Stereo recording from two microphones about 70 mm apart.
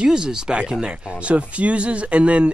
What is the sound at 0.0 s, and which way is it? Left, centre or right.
Speech, centre.